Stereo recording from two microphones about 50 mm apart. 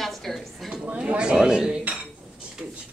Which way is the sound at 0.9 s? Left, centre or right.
Right.